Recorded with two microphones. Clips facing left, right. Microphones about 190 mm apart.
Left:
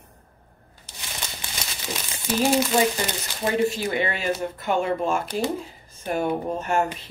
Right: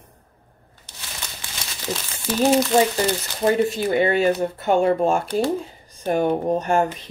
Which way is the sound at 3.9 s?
35° right (ahead or behind).